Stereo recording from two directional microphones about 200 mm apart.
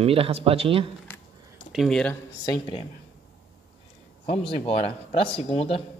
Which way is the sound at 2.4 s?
20° left (ahead or behind).